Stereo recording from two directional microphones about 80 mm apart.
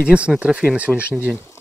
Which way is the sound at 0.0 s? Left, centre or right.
Centre.